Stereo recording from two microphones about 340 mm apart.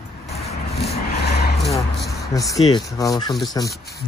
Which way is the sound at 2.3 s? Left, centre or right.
Centre.